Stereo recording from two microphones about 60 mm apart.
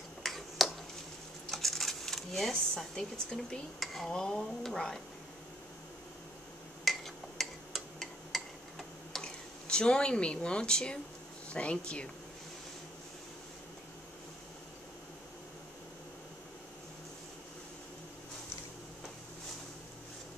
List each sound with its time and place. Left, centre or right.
0.2 s finger snapping: centre
1.5 s a sound: centre
2.7 s speech: centre
4.1 s speech: centre
6.8 s a sound: centre
9.2 s speech: centre